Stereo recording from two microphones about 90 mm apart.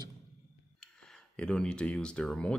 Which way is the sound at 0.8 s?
10° left (ahead or behind).